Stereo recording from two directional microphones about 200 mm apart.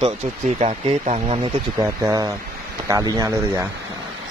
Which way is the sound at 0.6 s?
35° right (ahead or behind).